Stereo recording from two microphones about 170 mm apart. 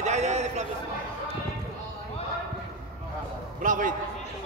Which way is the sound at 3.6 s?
50° right (ahead or behind).